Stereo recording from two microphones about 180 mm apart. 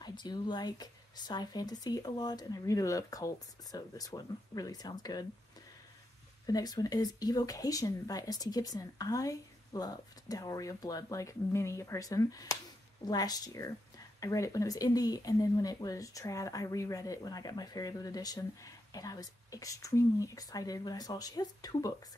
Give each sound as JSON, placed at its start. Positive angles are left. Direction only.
{"t": 0.0, "sound": "speech", "side_deg": 25}
{"t": 6.4, "sound": "speech", "side_deg": 20}